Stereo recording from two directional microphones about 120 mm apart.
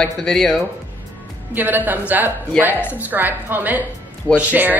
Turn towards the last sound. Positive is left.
turn(degrees=-15)  # may be behind; listen again after turning